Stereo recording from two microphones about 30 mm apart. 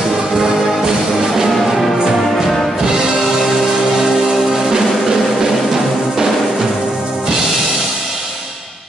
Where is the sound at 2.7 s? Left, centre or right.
Centre.